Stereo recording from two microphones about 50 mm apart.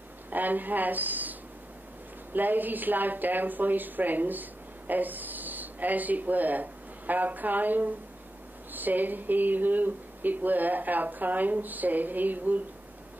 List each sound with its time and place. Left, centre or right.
0.3 s speech: right
2.3 s a woman's voice: right